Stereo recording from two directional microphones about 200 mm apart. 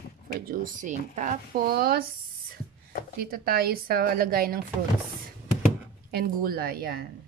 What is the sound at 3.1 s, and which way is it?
Speech, 50° right (ahead or behind).